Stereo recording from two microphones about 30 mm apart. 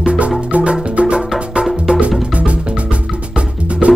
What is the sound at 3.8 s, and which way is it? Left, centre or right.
Music, right.